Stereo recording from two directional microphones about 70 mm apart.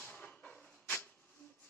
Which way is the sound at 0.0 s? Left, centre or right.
Left.